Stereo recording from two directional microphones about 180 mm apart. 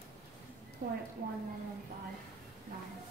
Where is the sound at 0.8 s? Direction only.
55° right (ahead or behind).